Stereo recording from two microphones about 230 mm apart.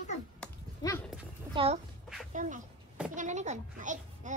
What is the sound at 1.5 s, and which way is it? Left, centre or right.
Speech, right.